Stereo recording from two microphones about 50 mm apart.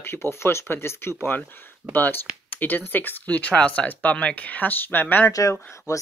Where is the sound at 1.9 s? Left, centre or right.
Left.